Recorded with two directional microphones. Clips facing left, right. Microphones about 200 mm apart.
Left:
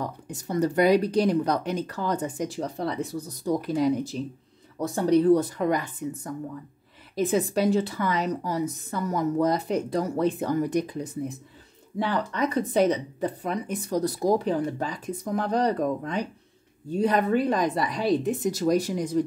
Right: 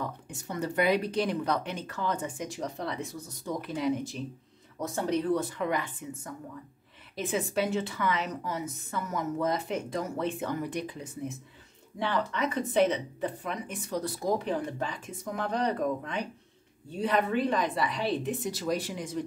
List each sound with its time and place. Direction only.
0.0 s speech: 35° left (ahead or behind)